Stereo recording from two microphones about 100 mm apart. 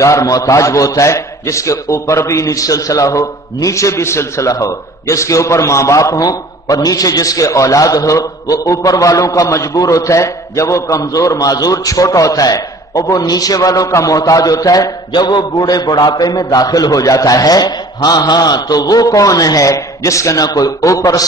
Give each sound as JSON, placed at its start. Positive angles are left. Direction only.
{"t": 0.0, "sound": "a man's voice", "side_deg": 35}